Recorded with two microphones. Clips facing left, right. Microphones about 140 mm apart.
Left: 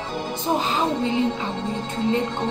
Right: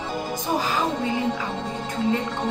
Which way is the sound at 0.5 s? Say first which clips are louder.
Left 2 dB; 25° left (ahead or behind).